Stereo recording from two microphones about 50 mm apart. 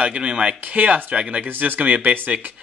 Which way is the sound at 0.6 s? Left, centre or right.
Right.